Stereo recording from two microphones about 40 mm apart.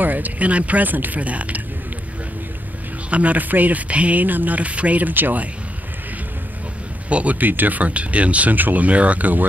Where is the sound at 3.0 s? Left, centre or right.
Right.